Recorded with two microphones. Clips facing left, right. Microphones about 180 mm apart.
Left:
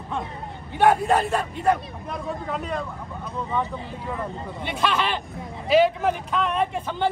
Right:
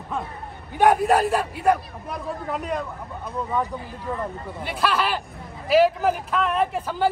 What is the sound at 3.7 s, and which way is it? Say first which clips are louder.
Speech: even; 25° left (ahead or behind).